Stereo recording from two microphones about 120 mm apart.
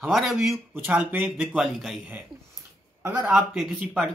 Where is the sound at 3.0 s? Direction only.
15° right (ahead or behind).